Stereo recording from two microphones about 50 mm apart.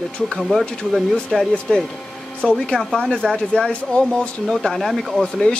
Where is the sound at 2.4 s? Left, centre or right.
Left.